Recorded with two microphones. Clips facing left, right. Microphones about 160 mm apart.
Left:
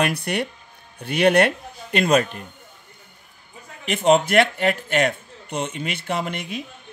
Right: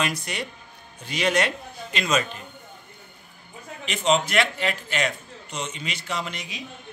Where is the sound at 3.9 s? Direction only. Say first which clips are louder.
Left 5 dB; 55° left (ahead or behind).